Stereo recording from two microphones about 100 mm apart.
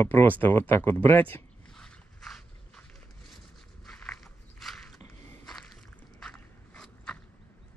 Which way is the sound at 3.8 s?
5° left (ahead or behind).